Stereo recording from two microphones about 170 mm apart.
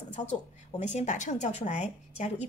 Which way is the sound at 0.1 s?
40° left (ahead or behind).